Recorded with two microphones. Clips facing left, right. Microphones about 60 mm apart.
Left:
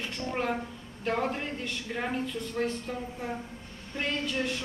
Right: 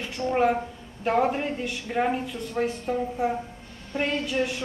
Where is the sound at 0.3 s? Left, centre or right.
Right.